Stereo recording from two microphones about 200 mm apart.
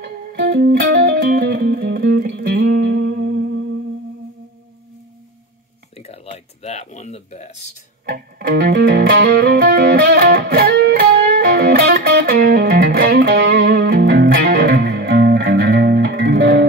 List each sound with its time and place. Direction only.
0.0 s music: 55° right (ahead or behind)
5.9 s a sound: 30° left (ahead or behind)
8.1 s music: 50° right (ahead or behind)